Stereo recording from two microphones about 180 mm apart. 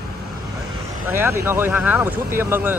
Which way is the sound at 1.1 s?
15° right (ahead or behind).